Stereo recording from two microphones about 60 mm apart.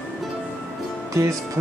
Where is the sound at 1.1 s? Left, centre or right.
Right.